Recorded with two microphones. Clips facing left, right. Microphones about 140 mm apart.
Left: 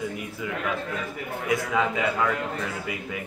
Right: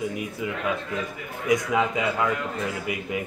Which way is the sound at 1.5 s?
15° right (ahead or behind).